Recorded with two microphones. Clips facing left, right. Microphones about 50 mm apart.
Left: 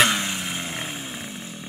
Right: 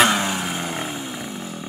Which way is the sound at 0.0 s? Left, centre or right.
Centre.